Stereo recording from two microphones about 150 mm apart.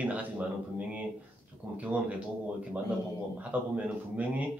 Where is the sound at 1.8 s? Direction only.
10° right (ahead or behind).